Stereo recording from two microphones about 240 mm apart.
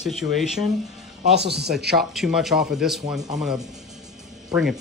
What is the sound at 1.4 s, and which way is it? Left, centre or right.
Speech, right.